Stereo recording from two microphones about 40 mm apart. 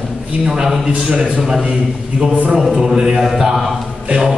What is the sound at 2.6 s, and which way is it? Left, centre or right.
A man's voice, centre.